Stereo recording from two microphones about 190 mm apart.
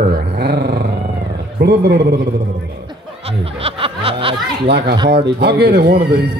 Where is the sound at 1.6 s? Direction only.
60° right (ahead or behind).